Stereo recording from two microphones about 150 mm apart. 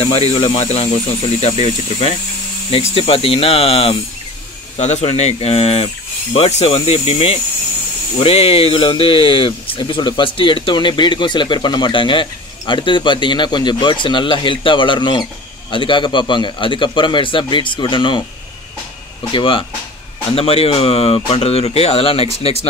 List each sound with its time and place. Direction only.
0.0 s speech: 40° left (ahead or behind)
19.3 s speech: 35° left (ahead or behind)